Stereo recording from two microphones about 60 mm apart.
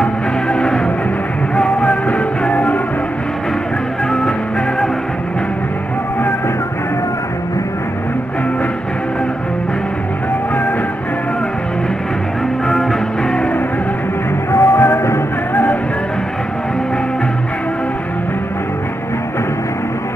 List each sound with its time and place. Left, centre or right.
0.0 s music: centre
14.5 s music: left
15.5 s music: left